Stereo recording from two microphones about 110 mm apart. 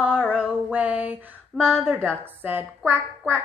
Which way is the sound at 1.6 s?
5° left (ahead or behind).